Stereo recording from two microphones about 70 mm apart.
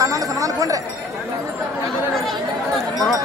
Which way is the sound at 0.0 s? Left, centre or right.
Right.